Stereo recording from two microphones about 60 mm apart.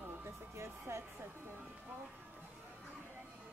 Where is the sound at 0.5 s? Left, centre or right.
Right.